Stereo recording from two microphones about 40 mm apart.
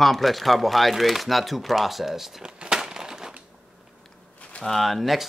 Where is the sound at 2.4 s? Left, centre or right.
Centre.